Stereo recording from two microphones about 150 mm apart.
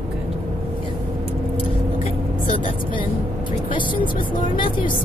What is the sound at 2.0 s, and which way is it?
A woman's voice, 40° left (ahead or behind).